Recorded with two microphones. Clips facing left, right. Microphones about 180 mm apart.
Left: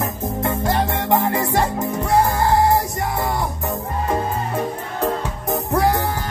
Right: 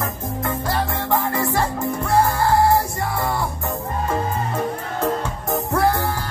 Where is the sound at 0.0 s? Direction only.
20° left (ahead or behind).